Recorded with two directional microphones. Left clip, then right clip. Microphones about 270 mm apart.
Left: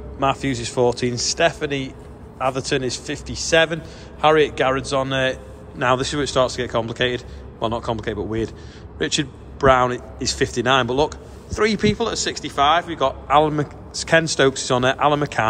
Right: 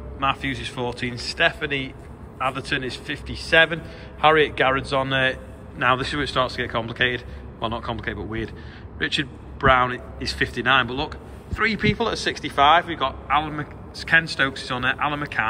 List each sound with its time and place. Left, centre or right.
0.2 s a man's voice: left